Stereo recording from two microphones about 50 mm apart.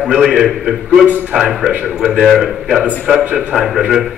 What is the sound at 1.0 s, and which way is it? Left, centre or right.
Speech, right.